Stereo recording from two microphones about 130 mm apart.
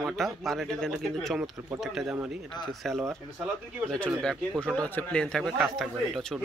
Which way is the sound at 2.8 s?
Centre (ahead or behind).